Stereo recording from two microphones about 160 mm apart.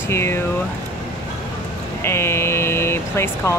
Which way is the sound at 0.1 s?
15° left (ahead or behind).